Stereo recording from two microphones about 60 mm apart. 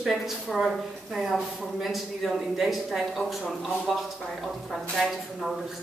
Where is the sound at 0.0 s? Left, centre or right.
Centre.